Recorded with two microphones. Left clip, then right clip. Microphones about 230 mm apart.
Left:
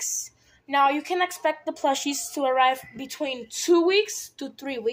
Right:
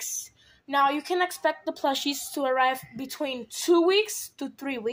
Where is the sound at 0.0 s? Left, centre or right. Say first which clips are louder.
Left 4 dB; right.